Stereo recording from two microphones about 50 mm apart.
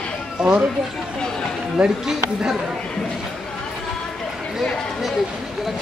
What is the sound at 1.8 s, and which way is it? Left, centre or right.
Speech, centre.